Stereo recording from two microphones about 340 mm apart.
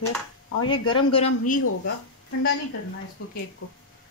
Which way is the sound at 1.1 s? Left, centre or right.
Left.